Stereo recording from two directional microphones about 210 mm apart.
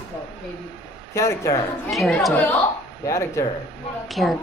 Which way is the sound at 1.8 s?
Centre (ahead or behind).